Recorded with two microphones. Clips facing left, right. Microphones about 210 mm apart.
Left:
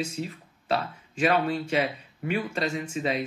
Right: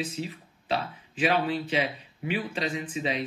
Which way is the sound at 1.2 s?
45° left (ahead or behind).